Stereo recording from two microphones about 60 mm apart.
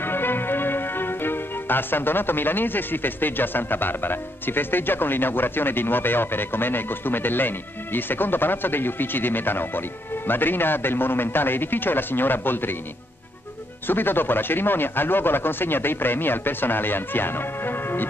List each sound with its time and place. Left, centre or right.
0.0 s speech: left
13.8 s speech: left